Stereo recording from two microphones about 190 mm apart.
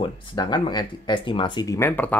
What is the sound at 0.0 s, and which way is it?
Speech, 20° left (ahead or behind).